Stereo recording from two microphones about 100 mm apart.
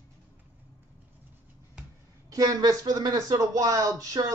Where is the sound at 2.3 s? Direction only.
35° right (ahead or behind).